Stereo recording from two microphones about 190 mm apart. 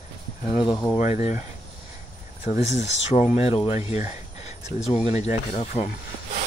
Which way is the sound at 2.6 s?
35° left (ahead or behind).